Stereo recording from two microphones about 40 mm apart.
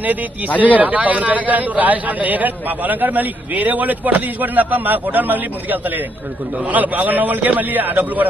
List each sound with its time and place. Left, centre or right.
0.7 s a man's voice: right